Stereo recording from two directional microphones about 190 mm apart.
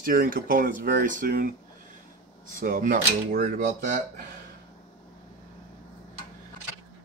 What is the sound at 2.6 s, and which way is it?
Speech, 45° right (ahead or behind).